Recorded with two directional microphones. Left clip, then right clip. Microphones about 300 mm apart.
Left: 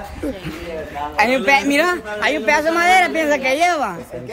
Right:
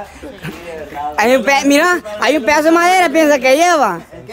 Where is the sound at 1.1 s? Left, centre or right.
Centre.